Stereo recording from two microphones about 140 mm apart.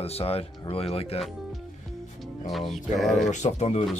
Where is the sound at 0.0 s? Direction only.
45° left (ahead or behind).